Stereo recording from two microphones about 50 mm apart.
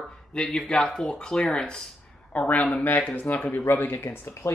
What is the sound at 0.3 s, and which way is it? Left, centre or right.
Speech, centre.